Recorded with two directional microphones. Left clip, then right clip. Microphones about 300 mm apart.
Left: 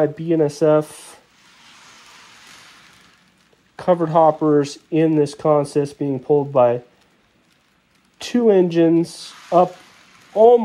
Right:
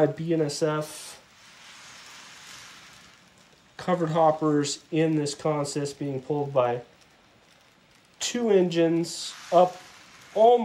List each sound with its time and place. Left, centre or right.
0.0 s speech: centre
0.6 s a sound: centre
3.7 s speech: centre
8.2 s speech: centre
10.3 s speech: centre